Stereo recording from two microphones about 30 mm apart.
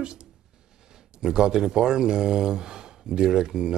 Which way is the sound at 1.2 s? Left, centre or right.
Right.